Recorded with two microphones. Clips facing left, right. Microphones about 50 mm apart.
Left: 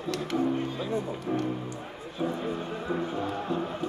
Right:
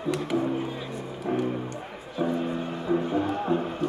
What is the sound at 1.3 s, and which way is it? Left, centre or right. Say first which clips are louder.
Speech: right 3 dB; right.